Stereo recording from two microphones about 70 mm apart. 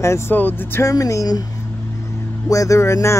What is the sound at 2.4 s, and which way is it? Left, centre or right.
Speech, left.